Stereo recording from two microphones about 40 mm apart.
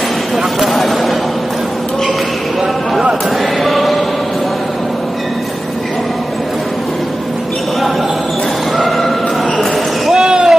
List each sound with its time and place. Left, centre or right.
0.6 s vehicle: centre
3.6 s choir: centre
8.7 s horse: centre
10.1 s a sound: centre